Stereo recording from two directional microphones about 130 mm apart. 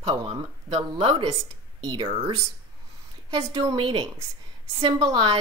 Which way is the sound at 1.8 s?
35° right (ahead or behind).